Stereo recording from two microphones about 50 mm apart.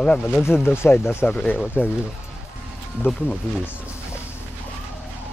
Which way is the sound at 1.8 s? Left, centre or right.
Left.